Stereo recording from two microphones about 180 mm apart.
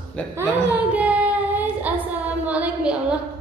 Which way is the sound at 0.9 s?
10° right (ahead or behind).